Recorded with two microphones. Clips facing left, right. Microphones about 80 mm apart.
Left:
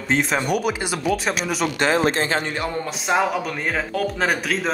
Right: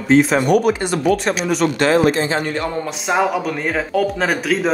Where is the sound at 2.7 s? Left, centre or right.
Centre.